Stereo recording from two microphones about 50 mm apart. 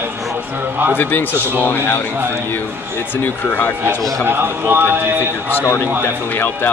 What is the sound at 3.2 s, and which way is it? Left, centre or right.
Speech, left.